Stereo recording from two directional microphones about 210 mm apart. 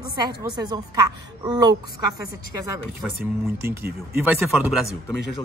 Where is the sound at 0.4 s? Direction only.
15° right (ahead or behind).